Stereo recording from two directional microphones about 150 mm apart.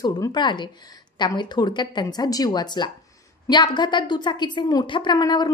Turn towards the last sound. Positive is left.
turn(degrees=25)  # may be behind; listen again after turning